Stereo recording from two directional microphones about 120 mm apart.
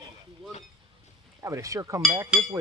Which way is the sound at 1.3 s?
25° right (ahead or behind).